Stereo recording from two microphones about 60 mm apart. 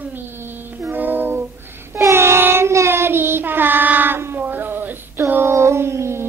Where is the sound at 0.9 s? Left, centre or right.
Right.